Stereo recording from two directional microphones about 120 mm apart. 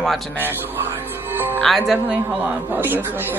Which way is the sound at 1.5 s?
Centre (ahead or behind).